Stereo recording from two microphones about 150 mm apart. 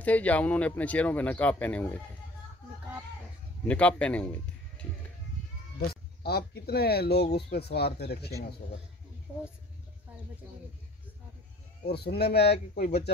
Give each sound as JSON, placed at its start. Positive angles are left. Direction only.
{"t": 0.0, "sound": "speech", "side_deg": 10}
{"t": 3.6, "sound": "a man's voice", "side_deg": 10}
{"t": 5.9, "sound": "speech", "side_deg": 90}
{"t": 9.3, "sound": "speech", "side_deg": -10}
{"t": 11.8, "sound": "speech", "side_deg": 90}